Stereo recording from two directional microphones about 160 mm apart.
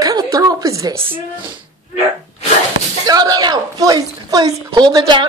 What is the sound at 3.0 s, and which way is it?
A woman's voice, 25° right (ahead or behind).